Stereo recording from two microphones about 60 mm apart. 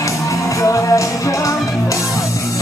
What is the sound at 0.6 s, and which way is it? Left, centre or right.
Music, left.